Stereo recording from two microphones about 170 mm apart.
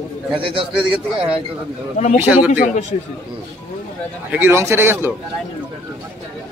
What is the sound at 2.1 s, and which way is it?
Speech, 10° right (ahead or behind).